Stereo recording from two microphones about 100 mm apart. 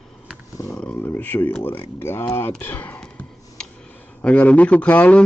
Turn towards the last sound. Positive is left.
turn(degrees=15)  # may be behind; listen again after turning